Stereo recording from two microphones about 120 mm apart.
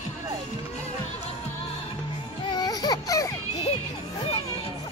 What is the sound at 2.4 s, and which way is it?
Baby cry, 35° left (ahead or behind).